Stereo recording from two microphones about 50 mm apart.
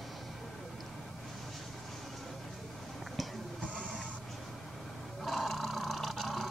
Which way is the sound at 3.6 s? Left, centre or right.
Left.